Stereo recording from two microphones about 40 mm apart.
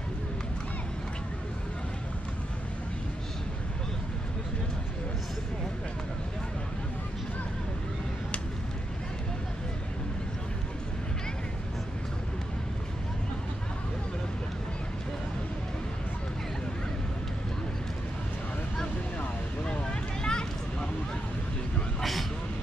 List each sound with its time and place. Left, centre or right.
19.6 s vehicle: left